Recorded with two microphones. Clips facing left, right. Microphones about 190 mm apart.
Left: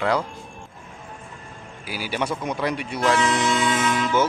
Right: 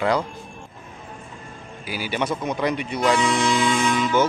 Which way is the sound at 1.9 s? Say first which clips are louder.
Right 1 dB; 5° left (ahead or behind).